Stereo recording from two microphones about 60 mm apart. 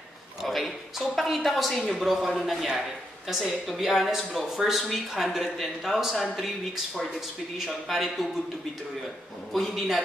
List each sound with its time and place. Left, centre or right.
0.4 s a woman's voice: centre
9.5 s a woman's voice: centre